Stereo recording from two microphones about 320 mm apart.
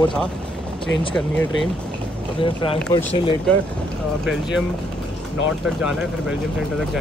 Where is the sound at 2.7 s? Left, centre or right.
Centre.